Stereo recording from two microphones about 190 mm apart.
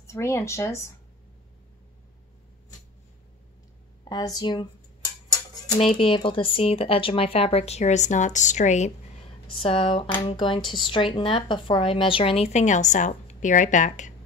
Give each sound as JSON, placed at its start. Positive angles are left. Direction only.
{"t": 0.0, "sound": "speech", "side_deg": 15}
{"t": 4.0, "sound": "speech", "side_deg": 20}
{"t": 5.8, "sound": "speech", "side_deg": 30}